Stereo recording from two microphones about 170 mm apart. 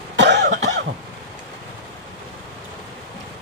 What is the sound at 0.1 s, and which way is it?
Cough, 90° right.